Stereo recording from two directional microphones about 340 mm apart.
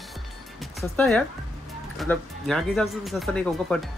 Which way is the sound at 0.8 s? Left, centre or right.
Centre.